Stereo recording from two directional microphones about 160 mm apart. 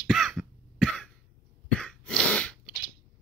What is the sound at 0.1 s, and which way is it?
Cough, centre (ahead or behind).